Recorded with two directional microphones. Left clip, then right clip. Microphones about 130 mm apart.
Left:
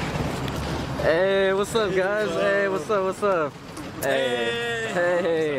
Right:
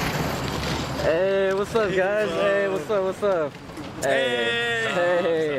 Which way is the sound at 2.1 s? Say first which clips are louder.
Right 1 dB; centre (ahead or behind).